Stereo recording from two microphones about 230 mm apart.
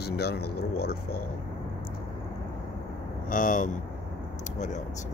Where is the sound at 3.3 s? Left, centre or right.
Left.